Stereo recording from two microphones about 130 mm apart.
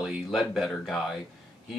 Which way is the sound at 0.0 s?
Centre (ahead or behind).